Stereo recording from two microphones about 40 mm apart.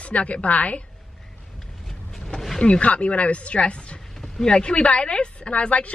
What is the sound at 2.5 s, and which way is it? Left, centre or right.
Speech, left.